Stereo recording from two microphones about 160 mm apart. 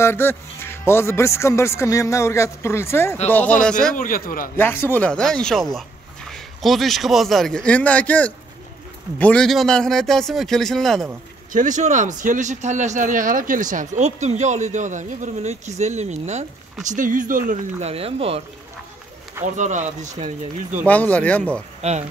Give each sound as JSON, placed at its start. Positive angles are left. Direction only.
{"t": 0.0, "sound": "a man's voice", "side_deg": 15}
{"t": 3.9, "sound": "a man's voice", "side_deg": 60}
{"t": 4.6, "sound": "a man's voice", "side_deg": 15}
{"t": 11.5, "sound": "speech", "side_deg": -50}
{"t": 19.4, "sound": "speech", "side_deg": -50}
{"t": 20.8, "sound": "a man's voice", "side_deg": 10}